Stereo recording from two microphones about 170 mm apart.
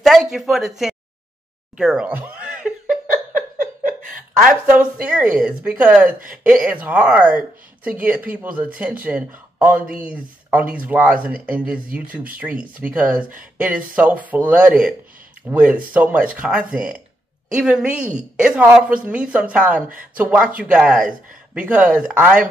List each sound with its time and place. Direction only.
0.0 s speech: centre (ahead or behind)
1.8 s a sound: 5° right (ahead or behind)
5.1 s speech: 10° right (ahead or behind)
6.0 s speech: 55° right (ahead or behind)
6.3 s a woman's voice: 5° right (ahead or behind)